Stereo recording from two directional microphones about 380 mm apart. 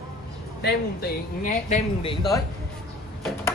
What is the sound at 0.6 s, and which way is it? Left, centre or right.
Speech, left.